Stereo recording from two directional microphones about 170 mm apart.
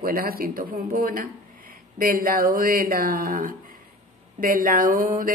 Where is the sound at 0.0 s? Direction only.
60° right (ahead or behind).